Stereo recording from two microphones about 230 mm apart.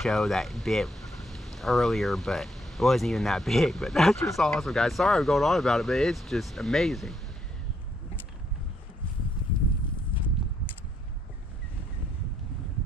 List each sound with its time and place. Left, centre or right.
0.0 s speech: centre